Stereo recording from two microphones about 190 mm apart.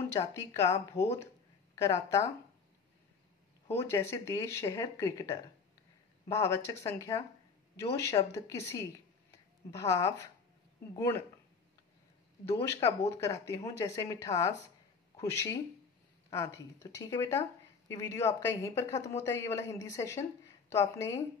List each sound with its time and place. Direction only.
0.1 s speech: 15° left (ahead or behind)
3.8 s speech: 15° left (ahead or behind)
12.4 s a woman's voice: 15° left (ahead or behind)